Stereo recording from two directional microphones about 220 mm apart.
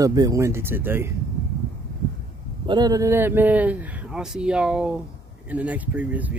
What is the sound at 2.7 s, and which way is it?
A man's voice, 15° right (ahead or behind).